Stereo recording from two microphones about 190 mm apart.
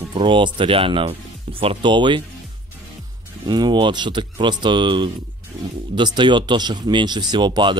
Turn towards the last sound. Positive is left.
turn(degrees=-25)  # may be behind; listen again after turning